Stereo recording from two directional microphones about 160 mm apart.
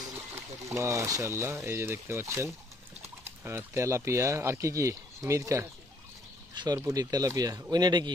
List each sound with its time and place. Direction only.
0.7 s speech: 20° right (ahead or behind)